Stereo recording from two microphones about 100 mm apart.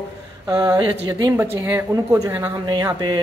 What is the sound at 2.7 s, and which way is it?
Speech, 45° right (ahead or behind).